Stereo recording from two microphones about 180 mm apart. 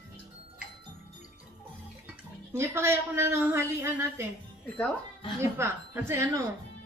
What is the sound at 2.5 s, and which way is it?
A woman's voice, 15° right (ahead or behind).